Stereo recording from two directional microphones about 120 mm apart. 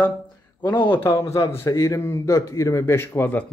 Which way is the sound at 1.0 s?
25° left (ahead or behind).